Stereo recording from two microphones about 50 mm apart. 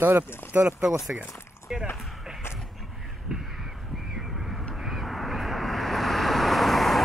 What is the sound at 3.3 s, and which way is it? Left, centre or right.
Speech, centre.